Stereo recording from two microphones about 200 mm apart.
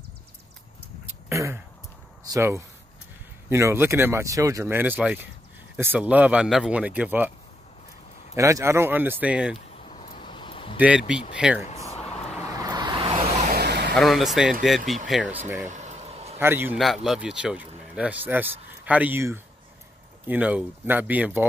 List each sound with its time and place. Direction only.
1.0 s a sound: 15° right (ahead or behind)
2.2 s a man's voice: 15° right (ahead or behind)
8.4 s a man's voice: 15° right (ahead or behind)
9.8 s a sound: 30° left (ahead or behind)
10.8 s speech: 5° right (ahead or behind)
12.4 s vehicle: 20° right (ahead or behind)
13.5 s vehicle: 55° right (ahead or behind)
13.9 s a man's voice: centre (ahead or behind)
15.7 s vehicle: 35° right (ahead or behind)
16.3 s a man's voice: 10° right (ahead or behind)